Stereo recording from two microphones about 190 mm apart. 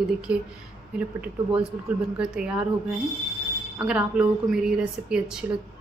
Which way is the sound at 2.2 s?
5° right (ahead or behind).